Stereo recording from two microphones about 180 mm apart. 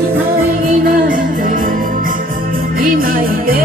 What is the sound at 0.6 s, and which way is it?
Music, 55° right (ahead or behind).